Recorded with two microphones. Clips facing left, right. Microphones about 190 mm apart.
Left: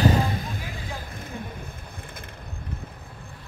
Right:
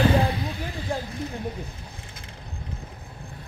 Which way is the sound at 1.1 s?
50° left (ahead or behind).